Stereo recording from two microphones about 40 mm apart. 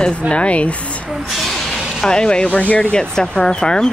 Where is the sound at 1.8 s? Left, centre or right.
Centre.